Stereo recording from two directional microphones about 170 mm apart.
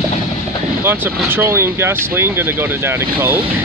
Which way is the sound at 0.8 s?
10° right (ahead or behind).